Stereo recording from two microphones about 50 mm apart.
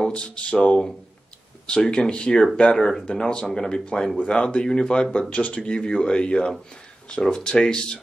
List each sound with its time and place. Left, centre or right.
0.1 s speech: left